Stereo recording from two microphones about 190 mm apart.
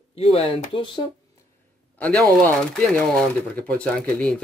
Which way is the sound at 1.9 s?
5° left (ahead or behind).